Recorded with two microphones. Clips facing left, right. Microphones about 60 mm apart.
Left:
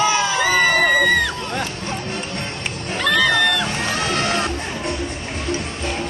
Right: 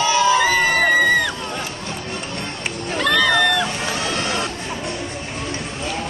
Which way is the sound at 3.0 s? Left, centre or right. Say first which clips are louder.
Even; centre.